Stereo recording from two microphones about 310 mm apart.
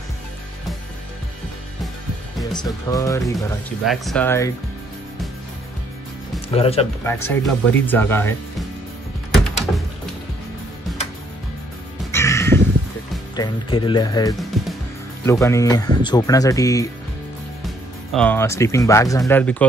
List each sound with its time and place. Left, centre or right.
2.5 s speech: centre
3.3 s speech: centre
6.5 s speech: centre
7.1 s speech: centre
12.1 s music: centre
13.4 s speech: centre
14.5 s music: centre
15.2 s speech: centre